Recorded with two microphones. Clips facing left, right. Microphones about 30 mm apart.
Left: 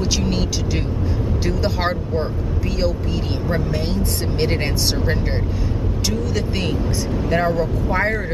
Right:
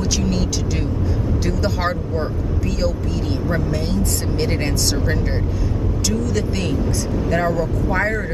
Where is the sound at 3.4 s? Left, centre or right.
Centre.